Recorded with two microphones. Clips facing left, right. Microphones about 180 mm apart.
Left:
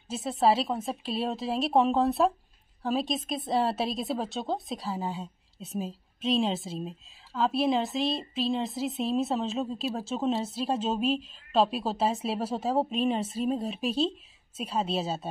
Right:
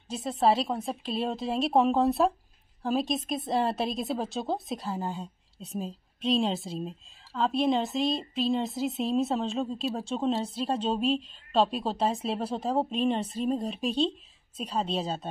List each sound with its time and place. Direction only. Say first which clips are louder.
0.1 s a woman's voice: even; centre (ahead or behind)